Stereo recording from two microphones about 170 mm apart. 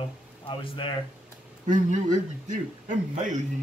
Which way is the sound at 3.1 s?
45° right (ahead or behind).